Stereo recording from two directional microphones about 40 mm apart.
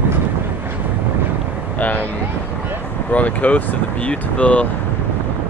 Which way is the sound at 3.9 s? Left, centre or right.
Left.